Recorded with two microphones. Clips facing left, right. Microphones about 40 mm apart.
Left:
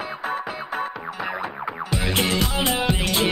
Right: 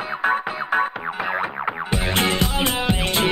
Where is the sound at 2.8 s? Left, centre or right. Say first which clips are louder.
Right 1 dB; centre.